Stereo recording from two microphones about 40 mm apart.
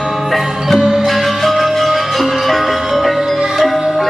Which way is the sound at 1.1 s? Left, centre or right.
Centre.